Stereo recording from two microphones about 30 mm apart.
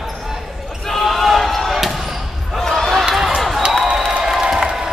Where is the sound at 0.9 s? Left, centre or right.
Centre.